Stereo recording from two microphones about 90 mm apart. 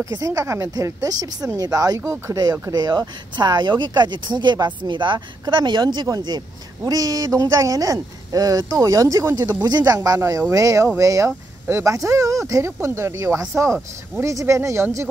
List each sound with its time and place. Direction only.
0.1 s speech: 40° right (ahead or behind)
9.6 s speech: 50° right (ahead or behind); by 15.0 s 35° right (ahead or behind)